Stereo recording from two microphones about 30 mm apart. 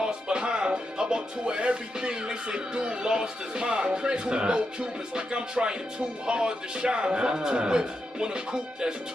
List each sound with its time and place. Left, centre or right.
0.0 s music: right
2.0 s speech: right